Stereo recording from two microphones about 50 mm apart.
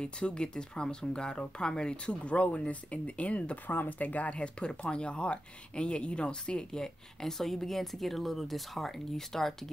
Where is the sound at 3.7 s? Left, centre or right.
Left.